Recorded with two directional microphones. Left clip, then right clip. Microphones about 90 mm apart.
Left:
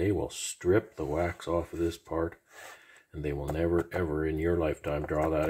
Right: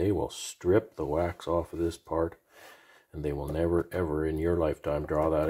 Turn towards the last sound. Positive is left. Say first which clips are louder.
# right 2 dB
turn(degrees=-5)  # may be behind; listen again after turning